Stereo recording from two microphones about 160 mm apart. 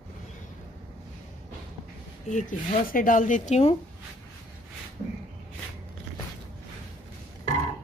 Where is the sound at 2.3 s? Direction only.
55° left (ahead or behind).